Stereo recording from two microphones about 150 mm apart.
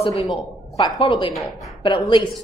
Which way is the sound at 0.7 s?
35° left (ahead or behind).